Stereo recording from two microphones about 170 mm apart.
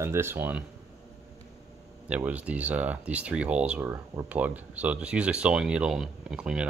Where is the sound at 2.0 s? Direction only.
10° right (ahead or behind).